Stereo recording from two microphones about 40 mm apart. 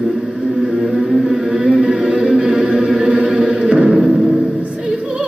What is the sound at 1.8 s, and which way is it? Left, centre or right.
Music, right.